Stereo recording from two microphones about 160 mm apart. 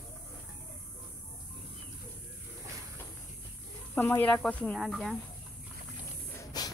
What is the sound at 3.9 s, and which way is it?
Speech, 10° left (ahead or behind).